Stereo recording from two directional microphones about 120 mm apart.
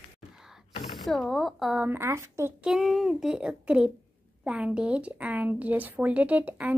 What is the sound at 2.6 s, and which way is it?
A child's voice, centre (ahead or behind).